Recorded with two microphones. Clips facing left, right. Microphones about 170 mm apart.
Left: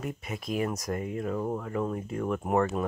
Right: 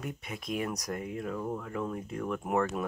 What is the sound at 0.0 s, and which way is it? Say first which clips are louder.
Speech: left 4 dB; centre (ahead or behind).